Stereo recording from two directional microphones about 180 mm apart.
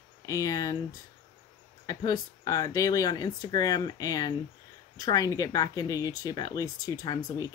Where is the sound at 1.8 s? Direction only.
20° left (ahead or behind).